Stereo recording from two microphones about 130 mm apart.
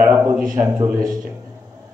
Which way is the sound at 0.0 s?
15° right (ahead or behind).